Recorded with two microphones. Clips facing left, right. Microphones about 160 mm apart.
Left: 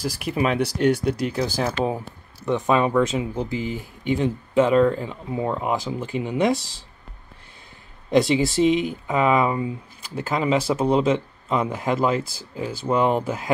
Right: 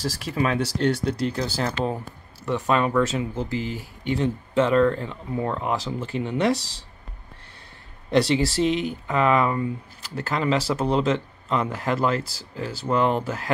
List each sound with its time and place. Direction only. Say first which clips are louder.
0.0 s speech: left 2 dB; 15° left (ahead or behind)
8.1 s speech: left 2 dB; 15° left (ahead or behind)